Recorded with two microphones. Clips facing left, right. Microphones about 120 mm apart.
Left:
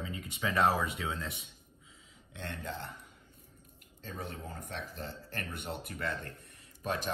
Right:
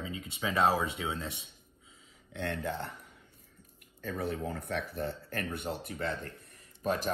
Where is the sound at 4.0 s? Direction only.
65° right (ahead or behind).